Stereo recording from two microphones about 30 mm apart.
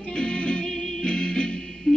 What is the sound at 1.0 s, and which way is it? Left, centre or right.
Music, left.